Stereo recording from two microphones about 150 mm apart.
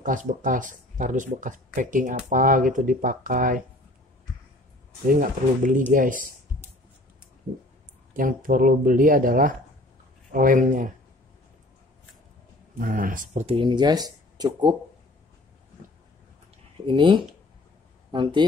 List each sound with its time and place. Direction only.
0.0 s speech: 60° right (ahead or behind)
5.0 s speech: 65° right (ahead or behind)
8.1 s speech: 65° right (ahead or behind)
12.7 s speech: 65° right (ahead or behind)
13.6 s speech: 30° right (ahead or behind)
16.8 s speech: 35° right (ahead or behind)